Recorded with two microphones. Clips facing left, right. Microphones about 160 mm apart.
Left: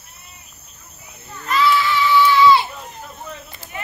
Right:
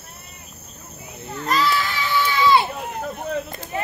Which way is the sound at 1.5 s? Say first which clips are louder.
Left 4 dB; 40° right (ahead or behind).